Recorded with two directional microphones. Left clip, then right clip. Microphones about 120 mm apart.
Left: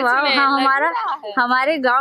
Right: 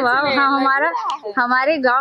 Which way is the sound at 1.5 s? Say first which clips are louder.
Right 3 dB; 35° left (ahead or behind).